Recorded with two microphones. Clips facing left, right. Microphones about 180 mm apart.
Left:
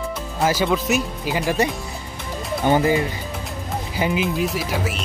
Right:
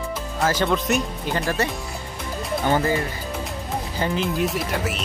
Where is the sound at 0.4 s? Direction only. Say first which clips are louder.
Left 2 dB; 10° left (ahead or behind).